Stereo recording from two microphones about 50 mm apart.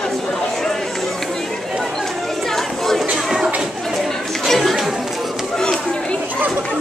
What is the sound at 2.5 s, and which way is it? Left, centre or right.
Chatter, centre.